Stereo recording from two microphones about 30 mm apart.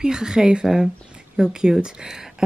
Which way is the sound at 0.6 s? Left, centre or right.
Centre.